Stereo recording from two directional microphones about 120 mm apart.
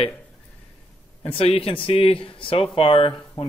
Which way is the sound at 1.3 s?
50° left (ahead or behind).